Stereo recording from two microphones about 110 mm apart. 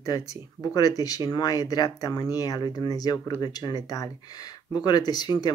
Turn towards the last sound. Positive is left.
turn(degrees=40)  # may be behind; listen again after turning